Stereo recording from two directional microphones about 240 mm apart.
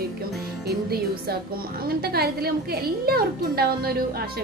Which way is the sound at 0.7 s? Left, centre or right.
Right.